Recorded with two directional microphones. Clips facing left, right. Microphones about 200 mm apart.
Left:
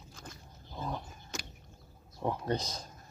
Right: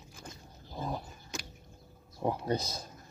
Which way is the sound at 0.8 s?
10° right (ahead or behind).